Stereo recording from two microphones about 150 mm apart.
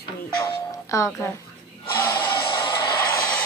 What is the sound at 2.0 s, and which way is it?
Music, 30° left (ahead or behind).